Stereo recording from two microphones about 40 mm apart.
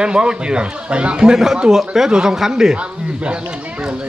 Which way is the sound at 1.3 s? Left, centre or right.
Centre.